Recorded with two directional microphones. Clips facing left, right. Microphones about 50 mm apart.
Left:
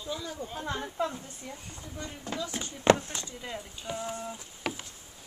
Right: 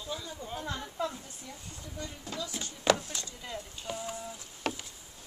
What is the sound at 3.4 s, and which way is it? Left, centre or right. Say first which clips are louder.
Speech: left 2 dB; centre.